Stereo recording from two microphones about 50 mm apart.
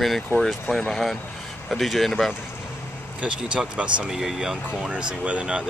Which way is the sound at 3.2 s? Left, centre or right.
Right.